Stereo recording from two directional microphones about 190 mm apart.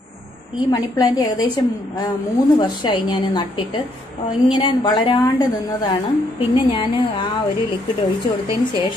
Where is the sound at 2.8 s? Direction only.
25° left (ahead or behind).